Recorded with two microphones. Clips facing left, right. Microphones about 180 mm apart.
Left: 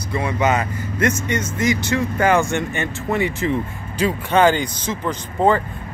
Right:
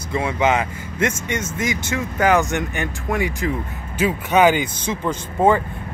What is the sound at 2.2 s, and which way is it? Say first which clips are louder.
Speech: right 1 dB; 15° right (ahead or behind).